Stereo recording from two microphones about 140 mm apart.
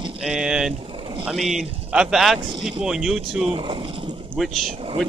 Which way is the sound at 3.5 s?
40° right (ahead or behind).